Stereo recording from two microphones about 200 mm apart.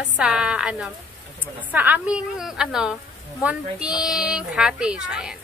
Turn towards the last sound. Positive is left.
turn(degrees=-5)  # may be behind; listen again after turning